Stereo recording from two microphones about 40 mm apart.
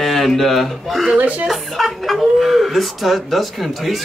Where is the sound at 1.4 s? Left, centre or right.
Centre.